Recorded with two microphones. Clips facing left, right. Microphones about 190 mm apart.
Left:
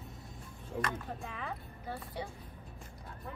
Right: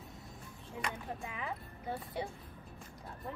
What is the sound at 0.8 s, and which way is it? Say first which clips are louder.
Speech: left 2 dB; 10° right (ahead or behind).